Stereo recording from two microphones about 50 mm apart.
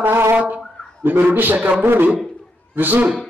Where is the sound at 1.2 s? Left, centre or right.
Right.